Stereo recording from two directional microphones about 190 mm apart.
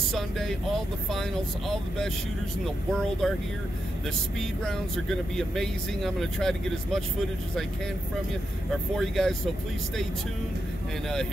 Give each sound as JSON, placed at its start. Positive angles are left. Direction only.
{"t": 0.1, "sound": "speech", "side_deg": 0}
{"t": 2.6, "sound": "speech", "side_deg": 0}
{"t": 5.3, "sound": "speech", "side_deg": 0}
{"t": 8.9, "sound": "speech", "side_deg": 0}